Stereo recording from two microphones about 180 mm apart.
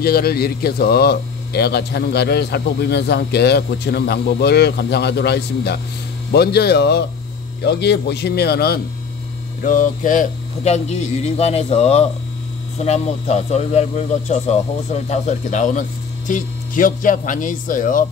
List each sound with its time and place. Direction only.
0.0 s speech: 60° left (ahead or behind)
9.6 s a man's voice: 50° left (ahead or behind)